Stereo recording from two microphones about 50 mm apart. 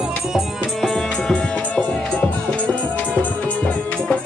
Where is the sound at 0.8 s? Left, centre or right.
Centre.